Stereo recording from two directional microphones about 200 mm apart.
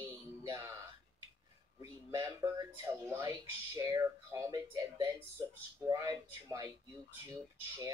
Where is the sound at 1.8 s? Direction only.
15° right (ahead or behind).